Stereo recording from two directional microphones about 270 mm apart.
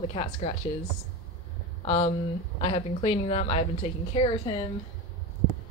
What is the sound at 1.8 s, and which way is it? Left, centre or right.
Speech, left.